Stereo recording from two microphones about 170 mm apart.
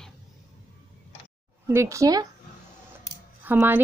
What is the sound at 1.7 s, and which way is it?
Speech, 15° right (ahead or behind).